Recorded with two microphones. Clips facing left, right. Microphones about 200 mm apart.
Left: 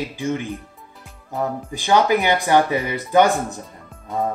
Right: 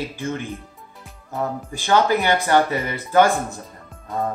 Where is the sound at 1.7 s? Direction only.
15° left (ahead or behind).